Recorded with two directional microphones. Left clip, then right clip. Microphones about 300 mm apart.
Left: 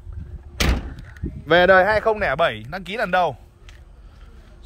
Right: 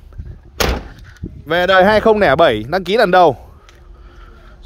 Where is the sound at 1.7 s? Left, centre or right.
Right.